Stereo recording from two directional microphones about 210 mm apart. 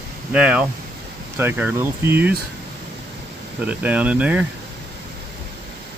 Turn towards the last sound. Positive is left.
turn(degrees=-5)  # may be behind; listen again after turning